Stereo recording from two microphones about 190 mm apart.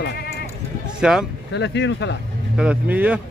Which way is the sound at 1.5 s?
65° left (ahead or behind).